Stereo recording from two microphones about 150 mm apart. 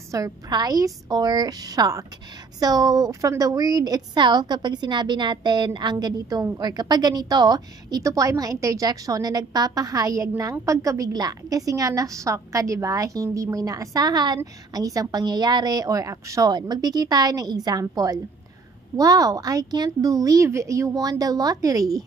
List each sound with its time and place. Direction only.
0.1 s a woman's voice: 25° right (ahead or behind)